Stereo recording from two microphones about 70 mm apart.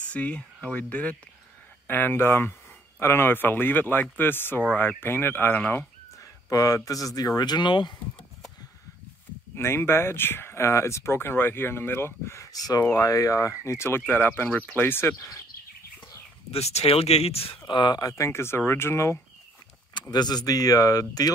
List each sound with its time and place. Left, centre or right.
0.1 s speech: centre
6.1 s a sound: left
7.2 s speech: left
9.6 s speech: left
12.5 s speech: left
13.7 s speech: left
15.1 s speech: left
17.6 s speech: left
18.1 s speech: left
19.9 s speech: left